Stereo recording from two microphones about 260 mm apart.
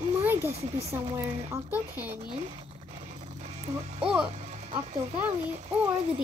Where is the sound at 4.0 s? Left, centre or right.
Centre.